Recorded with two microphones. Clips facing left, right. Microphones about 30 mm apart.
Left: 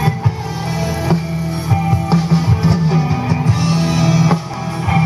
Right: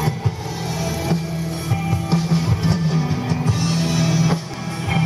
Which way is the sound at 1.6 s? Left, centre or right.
Left.